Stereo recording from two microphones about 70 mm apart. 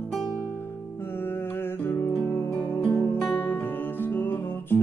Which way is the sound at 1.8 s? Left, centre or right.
Left.